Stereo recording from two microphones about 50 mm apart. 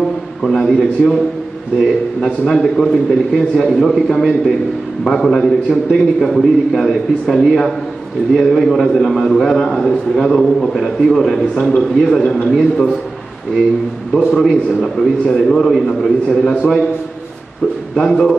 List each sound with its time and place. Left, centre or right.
0.4 s a man's voice: centre
2.2 s a man's voice: centre
14.3 s a man's voice: centre
17.9 s a man's voice: centre